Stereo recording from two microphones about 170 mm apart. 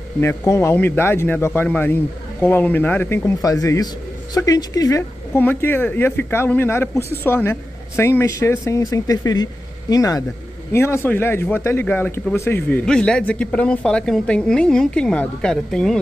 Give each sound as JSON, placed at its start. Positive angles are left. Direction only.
{"t": 0.2, "sound": "speech", "side_deg": 15}